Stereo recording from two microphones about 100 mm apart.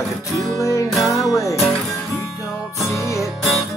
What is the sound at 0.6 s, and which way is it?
Music, 35° left (ahead or behind).